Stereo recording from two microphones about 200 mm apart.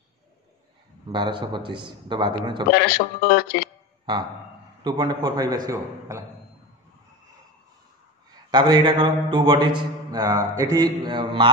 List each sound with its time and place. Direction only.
1.1 s a man's voice: 20° right (ahead or behind)
2.7 s speech: 50° left (ahead or behind)
4.8 s a man's voice: 20° right (ahead or behind)
8.3 s a man's voice: 20° right (ahead or behind)